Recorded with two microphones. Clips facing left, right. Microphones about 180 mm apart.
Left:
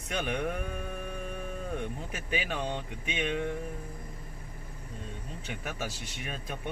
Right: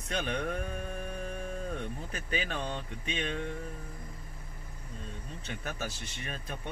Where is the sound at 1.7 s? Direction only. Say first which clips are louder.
Left 2 dB; 10° left (ahead or behind).